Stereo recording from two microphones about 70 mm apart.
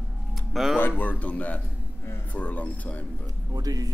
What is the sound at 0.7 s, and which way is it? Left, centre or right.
Speech, left.